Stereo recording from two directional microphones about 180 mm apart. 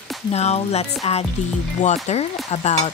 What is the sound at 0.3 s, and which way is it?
Speech, 35° left (ahead or behind).